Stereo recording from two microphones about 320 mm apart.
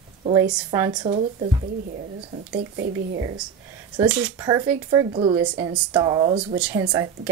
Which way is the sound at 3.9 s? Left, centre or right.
Centre.